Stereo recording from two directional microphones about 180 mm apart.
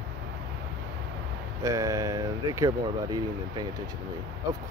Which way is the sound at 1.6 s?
20° right (ahead or behind).